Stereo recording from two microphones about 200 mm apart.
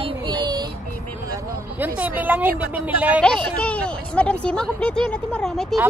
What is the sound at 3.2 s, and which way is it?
A woman's voice, 5° left (ahead or behind).